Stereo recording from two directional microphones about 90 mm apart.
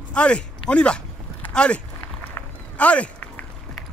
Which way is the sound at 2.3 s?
15° left (ahead or behind).